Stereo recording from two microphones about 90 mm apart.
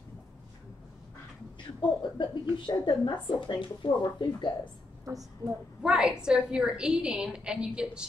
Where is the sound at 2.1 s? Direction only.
60° left (ahead or behind).